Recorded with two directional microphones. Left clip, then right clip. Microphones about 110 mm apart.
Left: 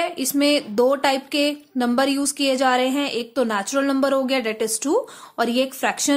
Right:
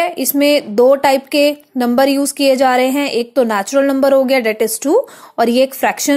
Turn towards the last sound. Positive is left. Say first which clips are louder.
# right 8 dB
turn(degrees=-35)  # may be behind; listen again after turning